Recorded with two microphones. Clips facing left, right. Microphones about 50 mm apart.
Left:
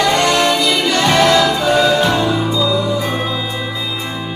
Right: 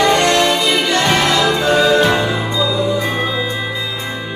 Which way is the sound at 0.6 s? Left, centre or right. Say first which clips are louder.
Even; centre.